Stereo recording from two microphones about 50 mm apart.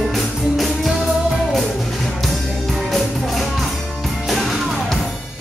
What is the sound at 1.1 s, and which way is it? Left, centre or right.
Music, centre.